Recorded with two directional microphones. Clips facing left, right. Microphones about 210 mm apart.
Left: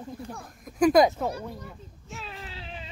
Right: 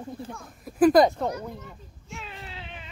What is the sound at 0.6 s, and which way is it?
Speech, centre (ahead or behind).